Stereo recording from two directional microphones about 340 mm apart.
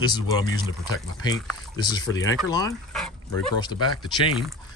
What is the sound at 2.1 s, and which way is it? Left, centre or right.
Speech, left.